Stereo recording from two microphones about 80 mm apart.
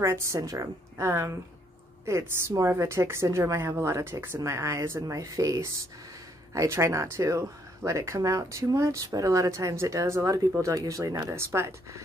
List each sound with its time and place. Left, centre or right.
0.0 s speech: right